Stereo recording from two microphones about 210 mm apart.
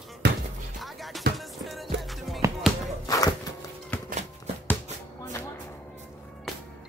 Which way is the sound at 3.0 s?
15° left (ahead or behind).